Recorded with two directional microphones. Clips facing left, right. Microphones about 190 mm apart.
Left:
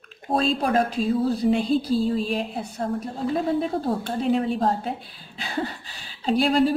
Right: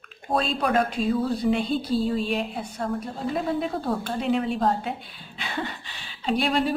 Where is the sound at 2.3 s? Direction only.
35° left (ahead or behind).